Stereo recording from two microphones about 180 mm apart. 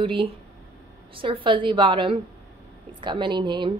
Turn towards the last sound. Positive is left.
turn(degrees=-25)  # may be behind; listen again after turning